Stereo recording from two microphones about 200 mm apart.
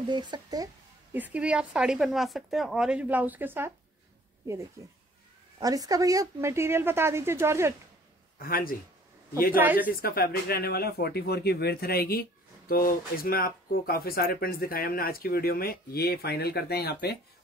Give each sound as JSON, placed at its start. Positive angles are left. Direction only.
{"t": 0.1, "sound": "speech", "side_deg": -20}
{"t": 1.1, "sound": "speech", "side_deg": -5}
{"t": 5.6, "sound": "speech", "side_deg": -20}
{"t": 8.4, "sound": "speech", "side_deg": 45}
{"t": 9.6, "sound": "speech", "side_deg": -10}
{"t": 9.8, "sound": "speech", "side_deg": 50}